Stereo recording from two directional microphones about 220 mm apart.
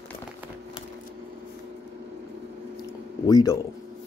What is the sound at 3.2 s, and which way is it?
Speech, 15° left (ahead or behind).